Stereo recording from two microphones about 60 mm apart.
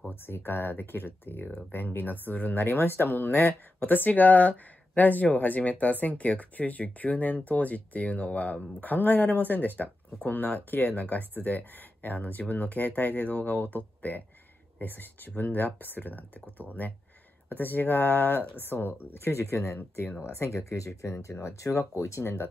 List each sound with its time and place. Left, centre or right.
0.1 s speech: left
19.8 s speech: left